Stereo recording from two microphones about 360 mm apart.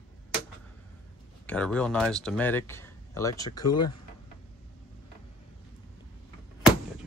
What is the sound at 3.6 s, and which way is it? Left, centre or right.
Speech, left.